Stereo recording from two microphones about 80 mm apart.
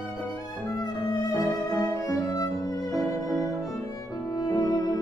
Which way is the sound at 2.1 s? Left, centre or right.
Left.